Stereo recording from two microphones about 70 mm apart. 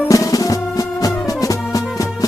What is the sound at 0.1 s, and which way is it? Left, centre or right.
Music, left.